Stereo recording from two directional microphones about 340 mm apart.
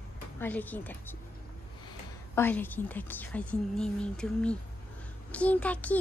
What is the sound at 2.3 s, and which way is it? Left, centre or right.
A child's voice, centre.